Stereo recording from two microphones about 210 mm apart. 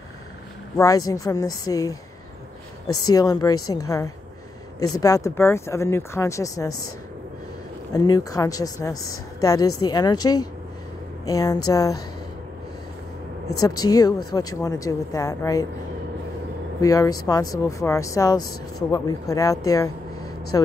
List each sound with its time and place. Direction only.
0.7 s a woman's voice: 15° left (ahead or behind)
3.2 s a woman's voice: 15° left (ahead or behind)
7.9 s a woman's voice: 15° left (ahead or behind)
13.6 s a woman's voice: 15° left (ahead or behind)
16.8 s a woman's voice: 15° left (ahead or behind)